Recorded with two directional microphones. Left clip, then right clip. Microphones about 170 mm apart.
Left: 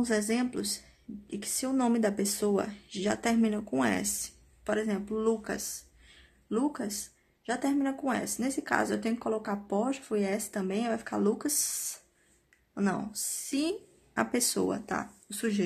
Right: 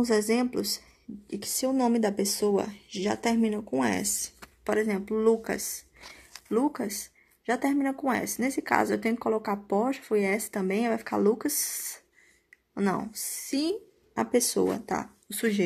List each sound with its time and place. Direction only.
0.0 s speech: 20° right (ahead or behind)
4.0 s speech: 30° right (ahead or behind)
6.5 s speech: 15° right (ahead or behind)
13.2 s speech: 15° right (ahead or behind)